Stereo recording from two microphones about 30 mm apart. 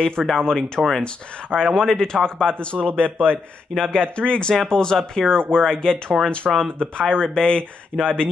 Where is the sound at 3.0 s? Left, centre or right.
Right.